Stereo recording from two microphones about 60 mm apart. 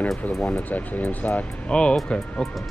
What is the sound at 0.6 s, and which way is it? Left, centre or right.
Speech, left.